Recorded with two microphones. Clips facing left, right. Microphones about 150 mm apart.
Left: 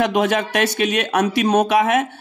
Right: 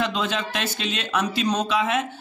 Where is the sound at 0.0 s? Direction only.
65° left (ahead or behind).